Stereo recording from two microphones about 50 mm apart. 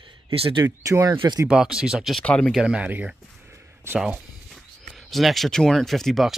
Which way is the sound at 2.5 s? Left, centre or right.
Centre.